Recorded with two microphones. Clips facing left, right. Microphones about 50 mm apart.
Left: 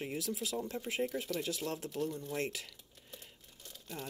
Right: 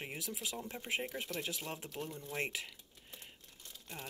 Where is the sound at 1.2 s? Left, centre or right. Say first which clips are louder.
Left 3 dB; right.